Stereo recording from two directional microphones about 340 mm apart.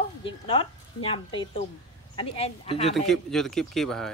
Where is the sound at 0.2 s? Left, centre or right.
Centre.